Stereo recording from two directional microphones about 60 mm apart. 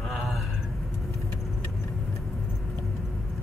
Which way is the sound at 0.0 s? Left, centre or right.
Centre.